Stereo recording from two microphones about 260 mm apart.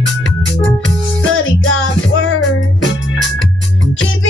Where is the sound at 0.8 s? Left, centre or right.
Left.